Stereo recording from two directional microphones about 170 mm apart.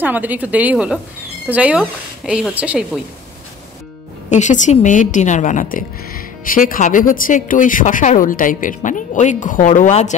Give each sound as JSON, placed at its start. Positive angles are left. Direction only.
{"t": 0.0, "sound": "a woman's voice", "side_deg": -10}
{"t": 4.3, "sound": "a woman's voice", "side_deg": 45}